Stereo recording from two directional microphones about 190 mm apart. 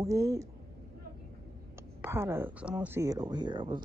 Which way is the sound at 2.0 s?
15° right (ahead or behind).